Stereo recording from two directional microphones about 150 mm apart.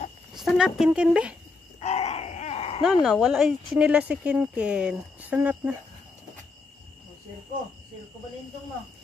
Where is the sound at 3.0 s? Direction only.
Centre (ahead or behind).